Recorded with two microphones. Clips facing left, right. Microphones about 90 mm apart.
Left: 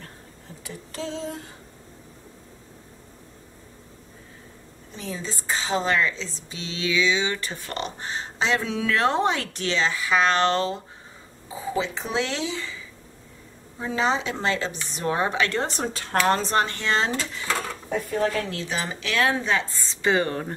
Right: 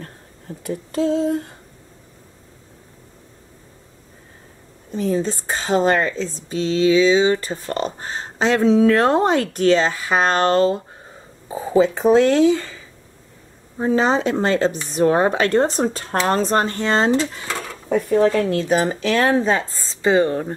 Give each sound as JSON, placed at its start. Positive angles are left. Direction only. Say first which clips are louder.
{"t": 0.7, "sound": "a woman's voice", "louder": "right 13 dB", "side_deg": -45}
{"t": 4.9, "sound": "a woman's voice", "louder": "right 13 dB", "side_deg": -45}
{"t": 18.5, "sound": "speech", "louder": "right 11 dB", "side_deg": -50}